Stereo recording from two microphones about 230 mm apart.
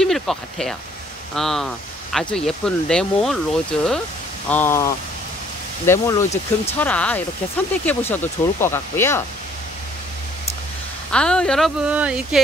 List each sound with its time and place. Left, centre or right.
0.0 s speech: centre
6.3 s speech: left
6.8 s speech: centre
11.1 s speech: centre